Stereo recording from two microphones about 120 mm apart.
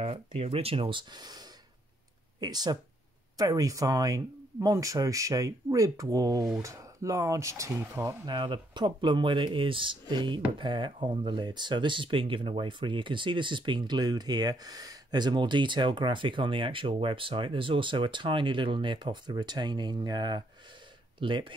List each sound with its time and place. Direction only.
0.0 s speech: 50° right (ahead or behind)
2.4 s speech: 35° right (ahead or behind)
8.3 s speech: 35° right (ahead or behind)